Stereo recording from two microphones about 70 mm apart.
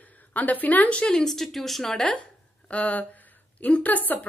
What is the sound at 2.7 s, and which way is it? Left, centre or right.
A woman's voice, left.